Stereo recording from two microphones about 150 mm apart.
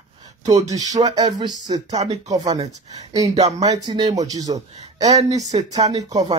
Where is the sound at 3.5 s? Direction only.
25° right (ahead or behind).